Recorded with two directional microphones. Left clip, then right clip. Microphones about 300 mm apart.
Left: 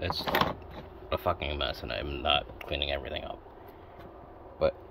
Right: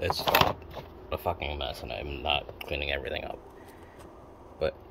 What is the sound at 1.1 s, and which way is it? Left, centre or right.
Speech, centre.